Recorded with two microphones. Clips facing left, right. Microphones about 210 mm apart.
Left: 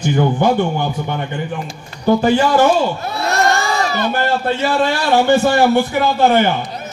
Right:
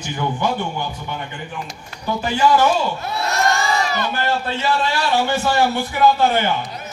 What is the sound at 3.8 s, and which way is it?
Crowd, 35° left (ahead or behind).